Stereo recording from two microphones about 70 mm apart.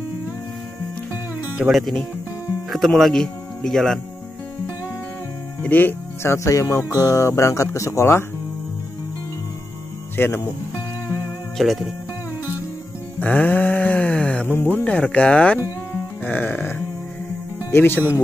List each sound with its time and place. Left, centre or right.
1.7 s speech: centre
5.6 s speech: left
6.3 s speech: left
10.1 s speech: left
11.5 s speech: centre
13.2 s a sound: left
14.5 s speech: left
14.9 s speech: centre
16.3 s music: left
17.6 s speech: left